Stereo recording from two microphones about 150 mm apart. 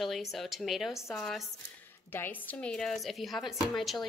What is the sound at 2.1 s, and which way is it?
A woman's voice, 15° left (ahead or behind).